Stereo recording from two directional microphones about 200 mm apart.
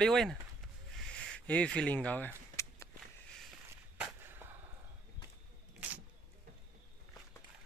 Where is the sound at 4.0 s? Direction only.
10° right (ahead or behind).